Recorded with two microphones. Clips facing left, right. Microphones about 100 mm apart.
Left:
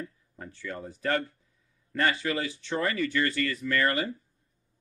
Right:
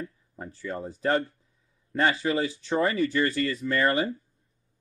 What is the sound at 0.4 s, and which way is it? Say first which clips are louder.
Speech: right 4 dB; 30° right (ahead or behind).